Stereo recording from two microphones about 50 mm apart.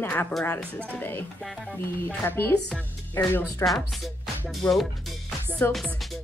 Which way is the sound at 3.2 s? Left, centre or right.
Left.